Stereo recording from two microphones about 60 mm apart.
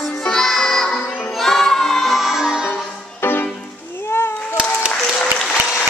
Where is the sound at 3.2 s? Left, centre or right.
Left.